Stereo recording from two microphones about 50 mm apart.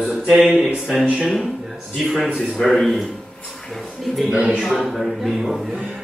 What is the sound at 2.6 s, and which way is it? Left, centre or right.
Speech, centre.